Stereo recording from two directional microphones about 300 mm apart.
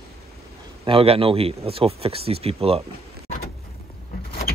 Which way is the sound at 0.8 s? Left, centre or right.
Centre.